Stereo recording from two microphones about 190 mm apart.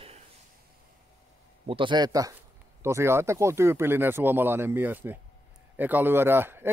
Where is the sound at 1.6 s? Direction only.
25° right (ahead or behind).